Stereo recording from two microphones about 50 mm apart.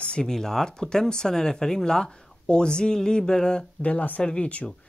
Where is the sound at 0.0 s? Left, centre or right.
Centre.